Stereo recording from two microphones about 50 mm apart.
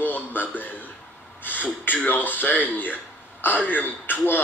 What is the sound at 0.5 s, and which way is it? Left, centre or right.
Speech, left.